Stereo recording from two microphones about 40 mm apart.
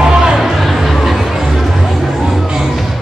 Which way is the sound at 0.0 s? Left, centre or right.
Centre.